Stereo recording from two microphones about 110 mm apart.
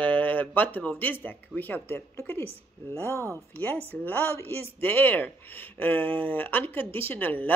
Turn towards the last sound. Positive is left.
turn(degrees=15)  # may be behind; listen again after turning